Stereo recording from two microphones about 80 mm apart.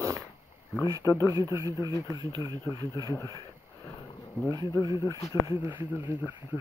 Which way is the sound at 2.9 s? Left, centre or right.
Left.